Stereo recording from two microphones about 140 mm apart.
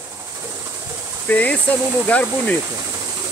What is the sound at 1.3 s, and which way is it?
Speech, 10° left (ahead or behind).